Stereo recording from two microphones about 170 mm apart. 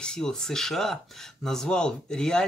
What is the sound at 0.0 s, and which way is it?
Speech, 5° left (ahead or behind).